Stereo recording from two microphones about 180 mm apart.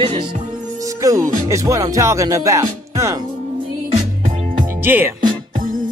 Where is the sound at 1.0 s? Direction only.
20° right (ahead or behind).